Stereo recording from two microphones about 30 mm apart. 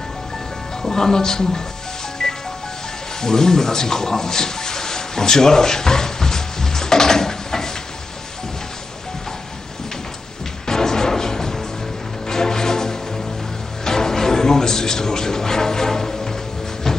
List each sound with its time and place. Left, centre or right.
0.8 s speech: centre
2.2 s music: centre
3.2 s a sound: centre
10.7 s music: centre